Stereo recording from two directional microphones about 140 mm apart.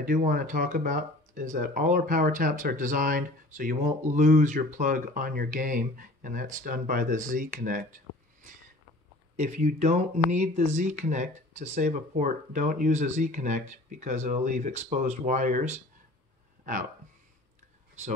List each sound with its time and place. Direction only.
0.0 s speech: 80° right
4.1 s speech: 65° right (ahead or behind)
9.4 s speech: 55° right (ahead or behind)